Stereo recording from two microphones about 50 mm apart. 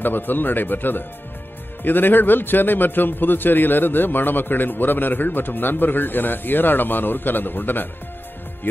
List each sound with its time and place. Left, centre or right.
0.0 s a man's voice: left